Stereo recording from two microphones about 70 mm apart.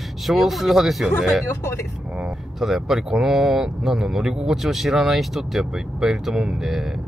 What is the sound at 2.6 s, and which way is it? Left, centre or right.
Speech, centre.